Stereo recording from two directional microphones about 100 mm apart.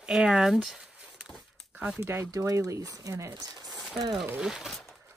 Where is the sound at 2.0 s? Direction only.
25° right (ahead or behind).